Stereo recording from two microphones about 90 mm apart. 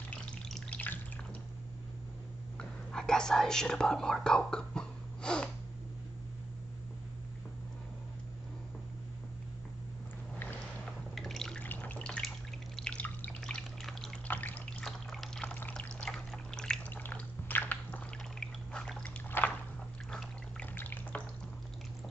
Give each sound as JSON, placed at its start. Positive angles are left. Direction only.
{"t": 0.1, "sound": "frying", "side_deg": 10}
{"t": 0.7, "sound": "drip", "side_deg": 20}
{"t": 2.5, "sound": "speech", "side_deg": 5}
{"t": 11.1, "sound": "drip", "side_deg": 5}
{"t": 11.6, "sound": "drip", "side_deg": 20}
{"t": 13.4, "sound": "pour", "side_deg": 10}
{"t": 14.2, "sound": "water", "side_deg": 20}
{"t": 15.4, "sound": "pour", "side_deg": 20}
{"t": 15.8, "sound": "drip", "side_deg": 10}
{"t": 16.9, "sound": "drip", "side_deg": 20}
{"t": 18.4, "sound": "liquid", "side_deg": 10}
{"t": 19.3, "sound": "a sound", "side_deg": 20}
{"t": 20.1, "sound": "pour", "side_deg": 10}
{"t": 20.7, "sound": "frying", "side_deg": 20}